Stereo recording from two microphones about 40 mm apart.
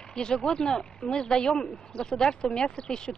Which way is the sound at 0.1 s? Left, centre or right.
Centre.